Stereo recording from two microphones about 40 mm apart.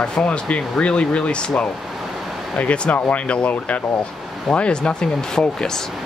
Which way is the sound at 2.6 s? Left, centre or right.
Left.